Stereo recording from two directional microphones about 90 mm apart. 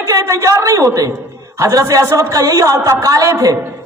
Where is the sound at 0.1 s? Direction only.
35° right (ahead or behind).